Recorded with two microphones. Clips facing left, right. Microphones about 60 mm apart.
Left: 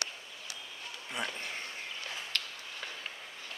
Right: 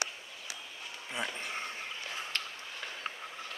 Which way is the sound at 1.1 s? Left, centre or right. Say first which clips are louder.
Even; centre.